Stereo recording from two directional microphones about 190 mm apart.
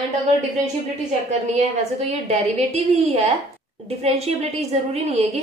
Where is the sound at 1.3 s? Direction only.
35° right (ahead or behind).